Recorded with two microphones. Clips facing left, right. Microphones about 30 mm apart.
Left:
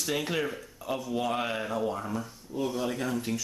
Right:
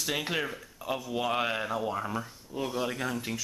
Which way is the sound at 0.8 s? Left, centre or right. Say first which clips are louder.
Even; right.